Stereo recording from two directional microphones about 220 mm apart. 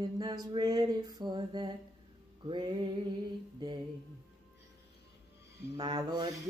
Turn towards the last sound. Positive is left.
turn(degrees=-20)  # may be behind; listen again after turning